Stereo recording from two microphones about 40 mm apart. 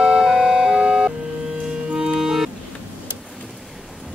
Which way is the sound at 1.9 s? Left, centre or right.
Right.